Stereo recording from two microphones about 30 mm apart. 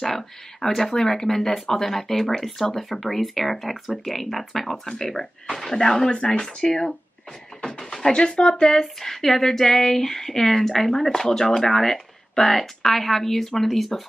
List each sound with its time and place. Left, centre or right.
0.0 s speech: centre
4.8 s speech: centre
5.9 s speech: left
6.4 s speech: centre
7.6 s a sound: centre
8.1 s speech: left
9.1 s speech: centre